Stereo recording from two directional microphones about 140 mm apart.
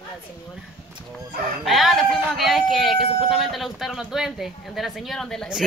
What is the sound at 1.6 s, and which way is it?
Speech, centre (ahead or behind).